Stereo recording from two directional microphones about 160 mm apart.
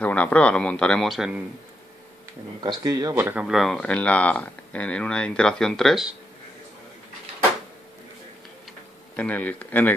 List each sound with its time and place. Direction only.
0.0 s speech: 10° left (ahead or behind)
2.6 s speech: 25° right (ahead or behind)
3.4 s speech: centre (ahead or behind)
9.1 s speech: 10° left (ahead or behind)